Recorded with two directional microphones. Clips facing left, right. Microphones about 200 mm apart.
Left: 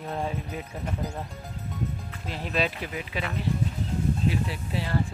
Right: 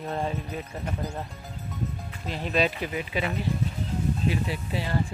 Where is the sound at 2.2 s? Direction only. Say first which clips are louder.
Right 3 dB; centre (ahead or behind).